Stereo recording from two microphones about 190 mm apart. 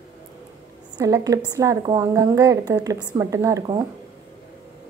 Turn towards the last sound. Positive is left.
turn(degrees=-20)  # may be behind; listen again after turning